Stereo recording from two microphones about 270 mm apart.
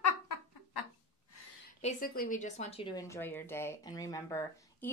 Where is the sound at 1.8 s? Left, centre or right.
Left.